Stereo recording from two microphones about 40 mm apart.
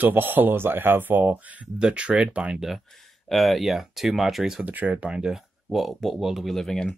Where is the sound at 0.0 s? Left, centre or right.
Right.